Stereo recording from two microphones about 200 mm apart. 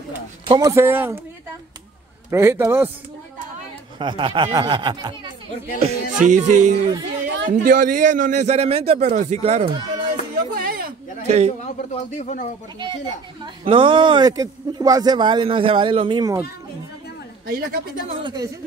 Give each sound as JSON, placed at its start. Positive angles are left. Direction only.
{"t": 0.5, "sound": "speech", "side_deg": -15}
{"t": 2.3, "sound": "speech", "side_deg": -10}
{"t": 4.0, "sound": "speech", "side_deg": -25}
{"t": 5.8, "sound": "a man's voice", "side_deg": -35}
{"t": 10.5, "sound": "a sound", "side_deg": -50}
{"t": 11.2, "sound": "a man's voice", "side_deg": -35}
{"t": 11.6, "sound": "speech", "side_deg": 35}
{"t": 13.7, "sound": "speech", "side_deg": -25}
{"t": 17.5, "sound": "speech", "side_deg": -45}
{"t": 18.0, "sound": "speech", "side_deg": -20}